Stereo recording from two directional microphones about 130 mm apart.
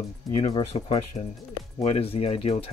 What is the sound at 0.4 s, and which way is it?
Speech, 50° left (ahead or behind).